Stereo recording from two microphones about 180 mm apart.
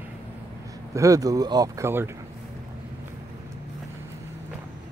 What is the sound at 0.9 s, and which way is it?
Speech, 20° right (ahead or behind).